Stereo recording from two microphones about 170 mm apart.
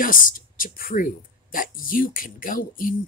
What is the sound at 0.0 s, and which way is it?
Speech, 55° left (ahead or behind).